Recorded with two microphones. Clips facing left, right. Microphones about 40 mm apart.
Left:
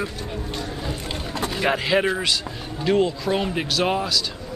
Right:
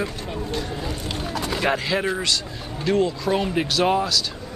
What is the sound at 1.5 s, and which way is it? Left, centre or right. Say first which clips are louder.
Speech: left 2 dB; centre.